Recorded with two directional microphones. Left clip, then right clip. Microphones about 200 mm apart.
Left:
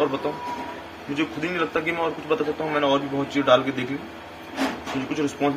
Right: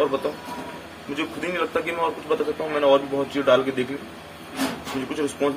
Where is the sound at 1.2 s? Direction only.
20° right (ahead or behind).